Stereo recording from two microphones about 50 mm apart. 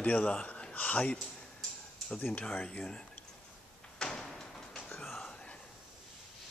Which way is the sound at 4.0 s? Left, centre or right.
Centre.